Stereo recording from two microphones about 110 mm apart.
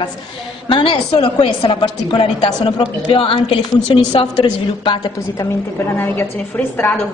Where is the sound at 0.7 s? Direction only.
45° left (ahead or behind).